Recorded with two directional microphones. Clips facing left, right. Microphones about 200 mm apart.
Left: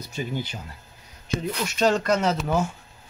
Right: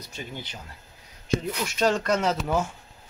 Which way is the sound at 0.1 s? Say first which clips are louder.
Left 9 dB; 5° left (ahead or behind).